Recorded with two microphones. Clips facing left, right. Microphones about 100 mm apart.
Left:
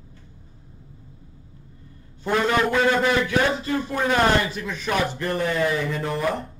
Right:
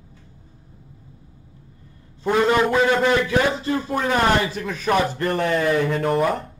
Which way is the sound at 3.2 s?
30° right (ahead or behind).